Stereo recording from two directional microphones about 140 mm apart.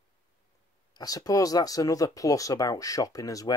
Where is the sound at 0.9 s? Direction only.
25° left (ahead or behind).